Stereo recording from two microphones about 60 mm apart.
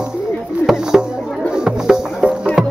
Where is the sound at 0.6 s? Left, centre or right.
Centre.